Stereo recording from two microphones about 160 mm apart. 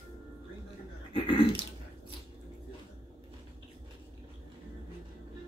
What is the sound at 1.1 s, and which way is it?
Speech, 35° left (ahead or behind).